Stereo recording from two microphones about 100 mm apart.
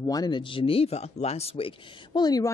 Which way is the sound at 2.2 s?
40° left (ahead or behind).